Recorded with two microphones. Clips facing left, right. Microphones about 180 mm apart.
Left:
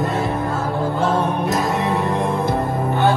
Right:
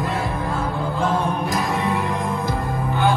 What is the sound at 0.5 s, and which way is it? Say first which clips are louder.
Music: left 3 dB; 5° left (ahead or behind).